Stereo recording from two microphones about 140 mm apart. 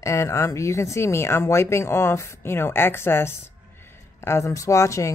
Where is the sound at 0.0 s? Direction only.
20° left (ahead or behind).